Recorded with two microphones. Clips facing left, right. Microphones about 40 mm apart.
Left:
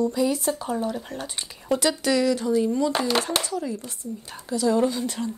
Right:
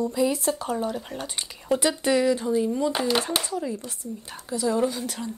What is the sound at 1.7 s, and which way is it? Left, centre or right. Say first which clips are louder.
Speech: even; right.